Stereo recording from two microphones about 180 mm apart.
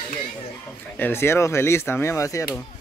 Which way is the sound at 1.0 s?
10° left (ahead or behind).